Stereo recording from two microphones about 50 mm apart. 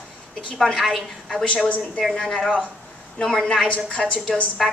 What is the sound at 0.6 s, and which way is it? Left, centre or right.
A woman's voice, centre.